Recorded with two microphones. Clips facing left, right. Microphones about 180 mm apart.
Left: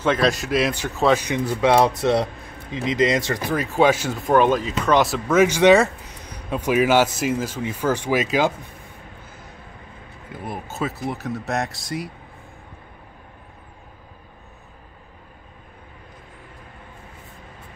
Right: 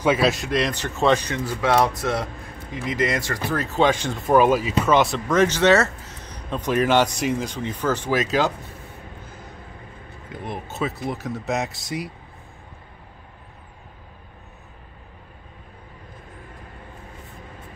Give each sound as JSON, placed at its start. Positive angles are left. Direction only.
{"t": 0.0, "sound": "speech", "side_deg": -5}
{"t": 4.3, "sound": "speech", "side_deg": -5}
{"t": 10.4, "sound": "speech", "side_deg": 0}